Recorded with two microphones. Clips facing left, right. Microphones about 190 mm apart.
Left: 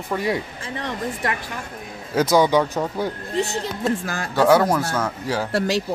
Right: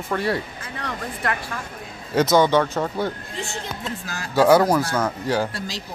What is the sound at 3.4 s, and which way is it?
Speech, 40° left (ahead or behind).